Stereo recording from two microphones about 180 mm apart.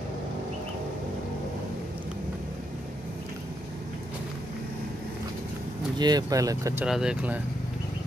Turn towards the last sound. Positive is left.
turn(degrees=-5)  # may be behind; listen again after turning